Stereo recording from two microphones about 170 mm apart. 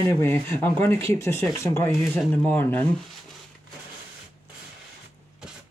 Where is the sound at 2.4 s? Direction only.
10° left (ahead or behind).